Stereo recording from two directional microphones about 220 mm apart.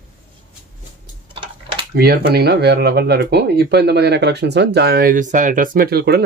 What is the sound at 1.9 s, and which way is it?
Speech, 45° right (ahead or behind).